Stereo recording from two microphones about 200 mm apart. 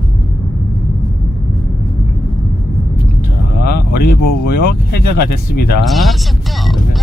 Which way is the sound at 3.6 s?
50° left (ahead or behind).